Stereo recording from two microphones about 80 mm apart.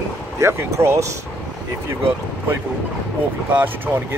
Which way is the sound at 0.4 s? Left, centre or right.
Right.